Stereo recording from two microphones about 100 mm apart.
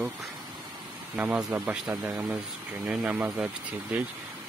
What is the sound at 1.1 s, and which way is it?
Speech, 10° right (ahead or behind).